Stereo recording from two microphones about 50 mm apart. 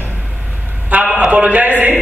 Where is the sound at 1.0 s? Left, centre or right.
Right.